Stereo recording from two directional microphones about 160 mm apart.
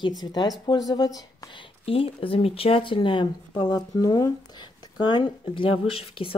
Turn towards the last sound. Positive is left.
turn(degrees=35)  # may be behind; listen again after turning